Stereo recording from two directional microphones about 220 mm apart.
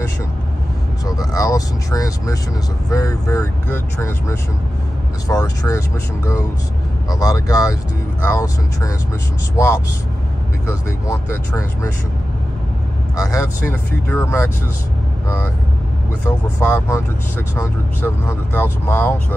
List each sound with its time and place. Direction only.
1.0 s speech: 15° left (ahead or behind)
10.7 s speech: 15° left (ahead or behind)
13.1 s speech: 15° left (ahead or behind)
16.3 s speech: 10° left (ahead or behind)